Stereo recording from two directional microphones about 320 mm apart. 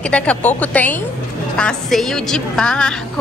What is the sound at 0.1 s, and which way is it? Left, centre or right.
Speech, centre.